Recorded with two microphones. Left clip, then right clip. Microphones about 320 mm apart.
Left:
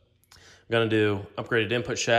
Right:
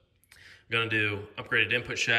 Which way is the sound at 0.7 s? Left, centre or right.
Centre.